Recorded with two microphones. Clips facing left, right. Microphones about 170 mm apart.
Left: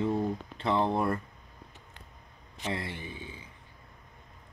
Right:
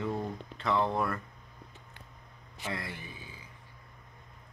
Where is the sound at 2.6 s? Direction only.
30° left (ahead or behind).